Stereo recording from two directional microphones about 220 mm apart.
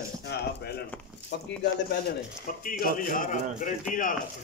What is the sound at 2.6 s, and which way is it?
Speech, 40° left (ahead or behind).